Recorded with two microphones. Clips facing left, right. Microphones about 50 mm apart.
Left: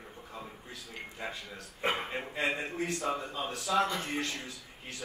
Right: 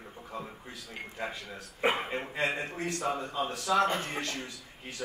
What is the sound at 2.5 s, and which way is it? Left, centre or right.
A man's voice, centre.